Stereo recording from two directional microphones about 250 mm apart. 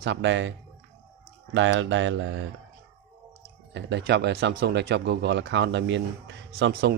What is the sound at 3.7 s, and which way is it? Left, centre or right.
A man's voice, right.